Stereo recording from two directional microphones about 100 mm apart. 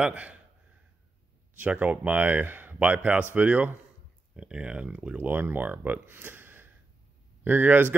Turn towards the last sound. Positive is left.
turn(degrees=-20)  # may be behind; listen again after turning